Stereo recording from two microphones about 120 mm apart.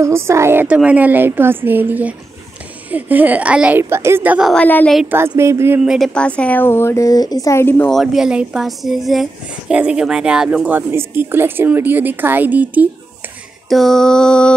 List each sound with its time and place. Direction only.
0.0 s a woman's voice: 20° right (ahead or behind)
3.9 s a woman's voice: 20° right (ahead or behind)
4.6 s speech: 10° left (ahead or behind)
5.0 s a woman's voice: 20° right (ahead or behind)
5.9 s speech: centre (ahead or behind)
7.9 s a woman's voice: centre (ahead or behind)
10.9 s a woman's voice: 20° right (ahead or behind)
13.7 s a woman's voice: centre (ahead or behind)